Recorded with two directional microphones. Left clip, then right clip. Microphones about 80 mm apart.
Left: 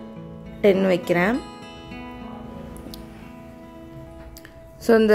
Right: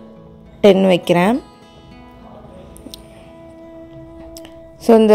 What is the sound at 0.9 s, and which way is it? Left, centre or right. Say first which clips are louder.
Speech: right 6 dB; right.